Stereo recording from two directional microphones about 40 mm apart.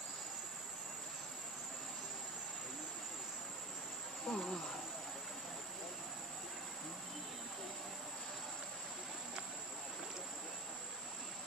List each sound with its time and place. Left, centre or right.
4.3 s speech: centre